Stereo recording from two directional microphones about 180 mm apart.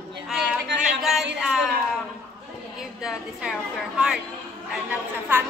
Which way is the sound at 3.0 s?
5° right (ahead or behind).